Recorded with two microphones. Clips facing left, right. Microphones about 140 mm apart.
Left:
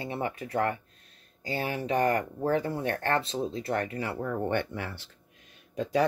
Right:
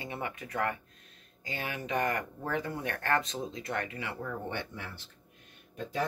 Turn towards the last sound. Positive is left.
turn(degrees=90)